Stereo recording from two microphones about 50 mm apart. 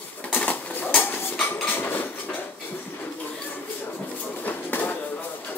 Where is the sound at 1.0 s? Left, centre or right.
Left.